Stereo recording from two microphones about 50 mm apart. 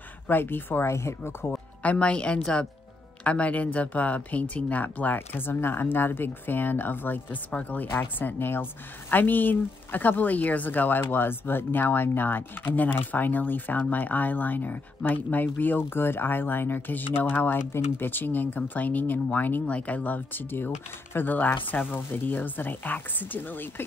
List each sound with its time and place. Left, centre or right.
0.3 s speech: left
0.8 s speech: left
1.8 s a woman's voice: left
19.6 s a woman's voice: left
20.0 s speech: left